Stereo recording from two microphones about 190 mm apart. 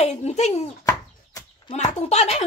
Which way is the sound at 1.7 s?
35° left (ahead or behind).